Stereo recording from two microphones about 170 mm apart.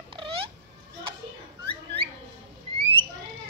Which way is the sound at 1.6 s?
30° right (ahead or behind).